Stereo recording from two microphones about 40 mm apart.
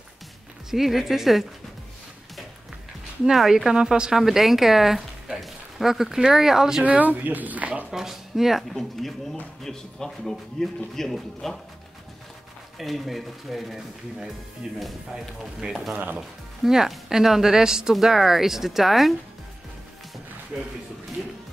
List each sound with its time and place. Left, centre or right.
0.7 s speech: centre
3.3 s speech: centre
3.7 s speech: right
4.1 s speech: centre
6.8 s speech: right
7.9 s speech: centre
8.7 s speech: centre
12.7 s speech: centre
15.9 s speech: right
16.2 s speech: centre